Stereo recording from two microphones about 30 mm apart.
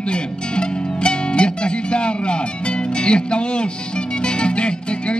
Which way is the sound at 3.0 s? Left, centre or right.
Left.